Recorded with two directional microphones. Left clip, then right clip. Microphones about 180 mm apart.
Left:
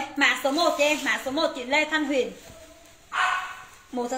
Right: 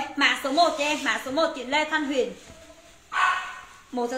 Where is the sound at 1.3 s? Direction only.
25° right (ahead or behind).